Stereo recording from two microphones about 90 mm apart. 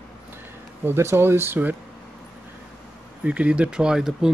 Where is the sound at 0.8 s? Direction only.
25° right (ahead or behind).